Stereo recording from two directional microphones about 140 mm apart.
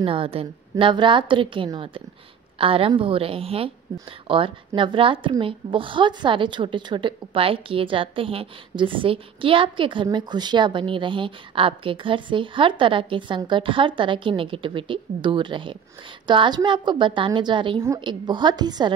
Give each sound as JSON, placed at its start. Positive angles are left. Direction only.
{"t": 0.0, "sound": "a woman's voice", "side_deg": -40}